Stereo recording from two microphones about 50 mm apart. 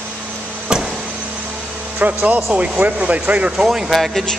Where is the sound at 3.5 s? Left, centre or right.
Centre.